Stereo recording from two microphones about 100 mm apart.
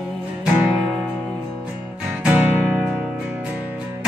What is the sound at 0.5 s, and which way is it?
Music, 15° right (ahead or behind).